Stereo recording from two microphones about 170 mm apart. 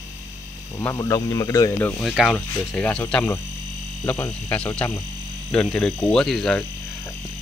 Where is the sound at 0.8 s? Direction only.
15° left (ahead or behind).